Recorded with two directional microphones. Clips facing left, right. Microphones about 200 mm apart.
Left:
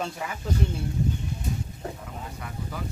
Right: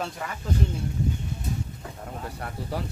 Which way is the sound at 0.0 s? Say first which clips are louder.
Left 1 dB; 5° left (ahead or behind).